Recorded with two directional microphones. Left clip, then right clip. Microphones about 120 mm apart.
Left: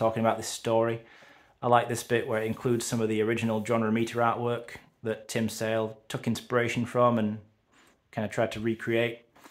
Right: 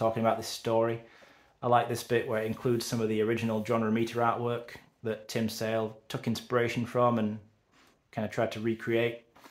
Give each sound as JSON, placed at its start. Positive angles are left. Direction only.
{"t": 0.0, "sound": "speech", "side_deg": 35}